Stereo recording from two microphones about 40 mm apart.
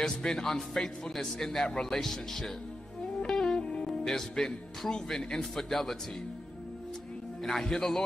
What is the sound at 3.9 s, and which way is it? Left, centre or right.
Speech, centre.